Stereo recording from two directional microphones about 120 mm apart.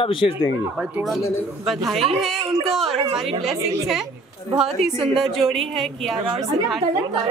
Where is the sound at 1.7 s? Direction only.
Centre (ahead or behind).